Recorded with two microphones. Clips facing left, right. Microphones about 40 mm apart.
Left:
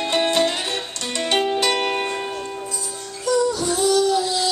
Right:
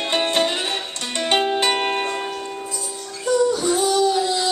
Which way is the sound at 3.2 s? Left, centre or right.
Right.